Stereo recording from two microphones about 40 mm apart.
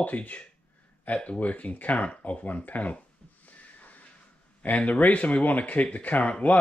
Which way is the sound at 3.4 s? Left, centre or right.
Left.